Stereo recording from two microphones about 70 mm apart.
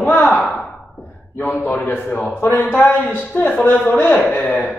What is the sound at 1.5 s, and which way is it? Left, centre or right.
A man's voice, left.